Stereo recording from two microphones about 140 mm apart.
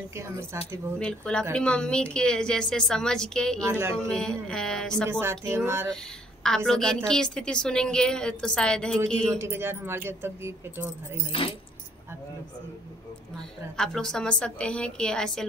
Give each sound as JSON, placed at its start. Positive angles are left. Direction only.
{"t": 0.1, "sound": "speech", "side_deg": -20}
{"t": 0.9, "sound": "a woman's voice", "side_deg": 5}
{"t": 3.6, "sound": "speech", "side_deg": -20}
{"t": 4.1, "sound": "a woman's voice", "side_deg": 5}
{"t": 5.2, "sound": "speech", "side_deg": -20}
{"t": 6.4, "sound": "a woman's voice", "side_deg": 5}
{"t": 9.4, "sound": "speech", "side_deg": -15}
{"t": 11.3, "sound": "speech", "side_deg": 40}
{"t": 13.7, "sound": "a woman's voice", "side_deg": 5}